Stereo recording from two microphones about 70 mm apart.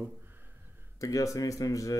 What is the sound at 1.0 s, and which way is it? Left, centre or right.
Speech, left.